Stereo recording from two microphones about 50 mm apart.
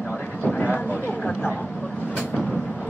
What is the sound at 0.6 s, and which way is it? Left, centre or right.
Speech, left.